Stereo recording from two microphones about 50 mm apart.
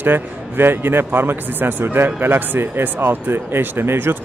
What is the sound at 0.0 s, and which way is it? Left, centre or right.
A man's voice, right.